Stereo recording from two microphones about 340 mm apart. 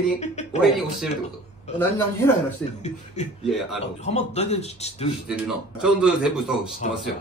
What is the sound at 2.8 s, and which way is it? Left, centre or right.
Speech, centre.